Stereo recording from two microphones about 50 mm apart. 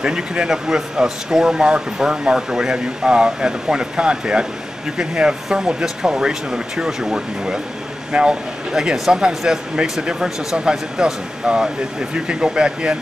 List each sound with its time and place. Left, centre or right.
0.0 s speech: centre